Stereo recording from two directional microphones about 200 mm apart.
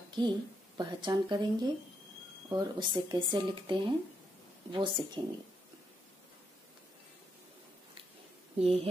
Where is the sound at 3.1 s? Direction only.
25° right (ahead or behind).